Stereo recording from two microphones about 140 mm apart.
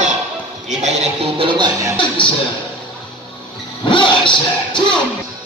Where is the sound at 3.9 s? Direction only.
35° left (ahead or behind).